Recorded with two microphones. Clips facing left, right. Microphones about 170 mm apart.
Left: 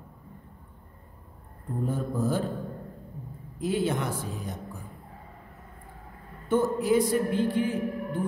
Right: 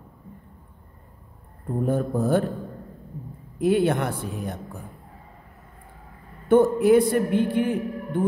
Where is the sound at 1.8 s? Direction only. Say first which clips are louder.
Right 5 dB; 60° right (ahead or behind).